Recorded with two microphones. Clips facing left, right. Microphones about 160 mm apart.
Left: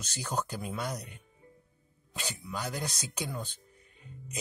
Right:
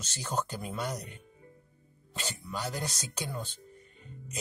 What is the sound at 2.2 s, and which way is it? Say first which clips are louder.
Speech: right 1 dB; 10° left (ahead or behind).